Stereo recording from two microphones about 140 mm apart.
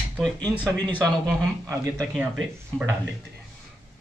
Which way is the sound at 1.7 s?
25° right (ahead or behind).